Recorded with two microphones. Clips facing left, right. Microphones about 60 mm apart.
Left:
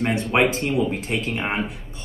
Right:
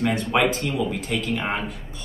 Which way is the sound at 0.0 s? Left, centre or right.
Left.